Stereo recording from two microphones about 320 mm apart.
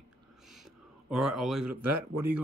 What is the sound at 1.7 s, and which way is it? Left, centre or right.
Speech, right.